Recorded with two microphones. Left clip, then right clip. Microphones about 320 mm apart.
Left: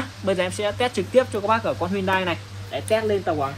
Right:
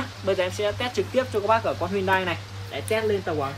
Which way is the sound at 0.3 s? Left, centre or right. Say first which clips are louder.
Left 1 dB; left.